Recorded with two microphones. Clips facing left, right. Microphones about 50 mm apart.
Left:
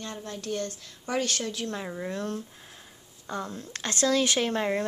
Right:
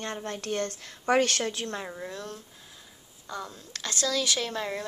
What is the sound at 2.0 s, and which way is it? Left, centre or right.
Speech, left.